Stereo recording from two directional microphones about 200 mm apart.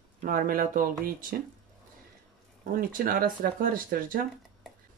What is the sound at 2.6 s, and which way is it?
Speech, 45° right (ahead or behind).